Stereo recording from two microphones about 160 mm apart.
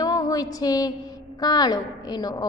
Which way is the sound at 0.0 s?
25° left (ahead or behind).